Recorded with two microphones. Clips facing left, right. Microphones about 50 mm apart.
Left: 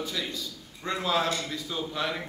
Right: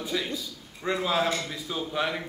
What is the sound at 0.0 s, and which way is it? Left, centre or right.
A man's voice, centre.